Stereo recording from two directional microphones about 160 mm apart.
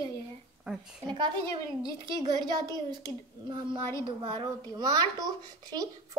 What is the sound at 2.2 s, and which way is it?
Speech, 25° right (ahead or behind).